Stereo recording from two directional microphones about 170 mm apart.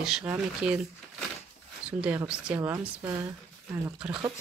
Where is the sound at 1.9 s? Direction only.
5° right (ahead or behind).